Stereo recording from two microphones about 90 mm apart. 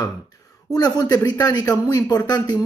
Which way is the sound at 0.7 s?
50° left (ahead or behind).